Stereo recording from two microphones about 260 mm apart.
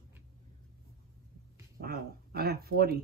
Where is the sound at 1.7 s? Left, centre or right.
Right.